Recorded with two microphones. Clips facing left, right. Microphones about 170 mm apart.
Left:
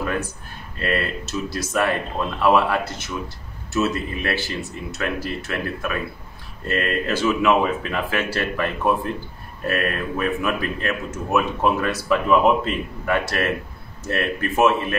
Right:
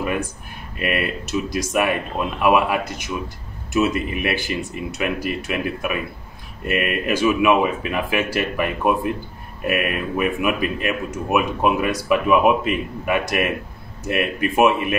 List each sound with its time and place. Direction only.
0.7 s a man's voice: 15° right (ahead or behind)